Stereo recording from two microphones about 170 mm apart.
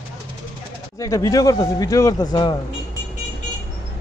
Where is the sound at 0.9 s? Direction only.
20° left (ahead or behind).